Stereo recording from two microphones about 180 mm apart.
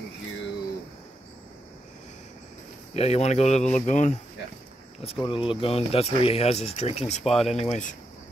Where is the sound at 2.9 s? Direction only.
35° left (ahead or behind).